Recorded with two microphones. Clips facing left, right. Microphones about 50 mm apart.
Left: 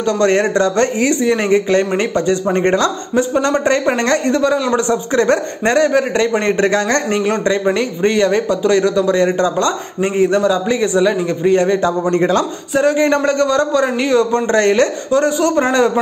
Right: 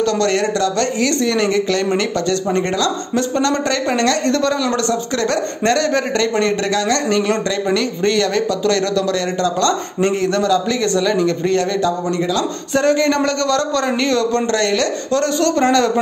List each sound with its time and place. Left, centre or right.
0.0 s a man's voice: left
12.7 s a man's voice: centre; by 14.9 s left
15.0 s a man's voice: centre